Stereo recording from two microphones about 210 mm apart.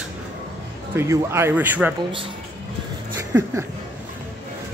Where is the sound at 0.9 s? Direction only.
15° right (ahead or behind).